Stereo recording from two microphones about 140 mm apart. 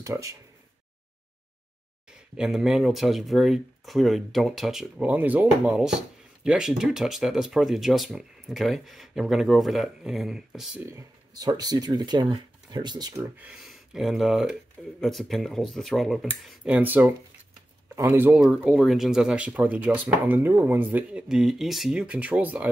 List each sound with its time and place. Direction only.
0.0 s speech: 25° right (ahead or behind)
2.0 s speech: 5° right (ahead or behind)
10.9 s speech: 25° right (ahead or behind)
13.4 s speech: 5° right (ahead or behind)